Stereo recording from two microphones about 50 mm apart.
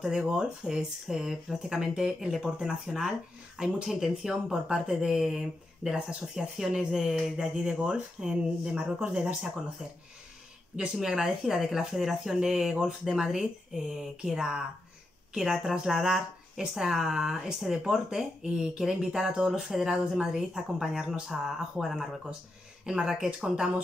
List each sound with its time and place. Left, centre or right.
0.0 s speech: centre
10.8 s speech: centre
15.3 s speech: centre